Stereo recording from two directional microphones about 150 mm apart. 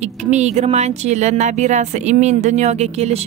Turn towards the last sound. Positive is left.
turn(degrees=-45)  # may be behind; listen again after turning